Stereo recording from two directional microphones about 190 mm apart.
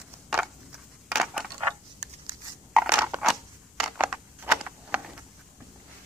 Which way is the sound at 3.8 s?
5° right (ahead or behind).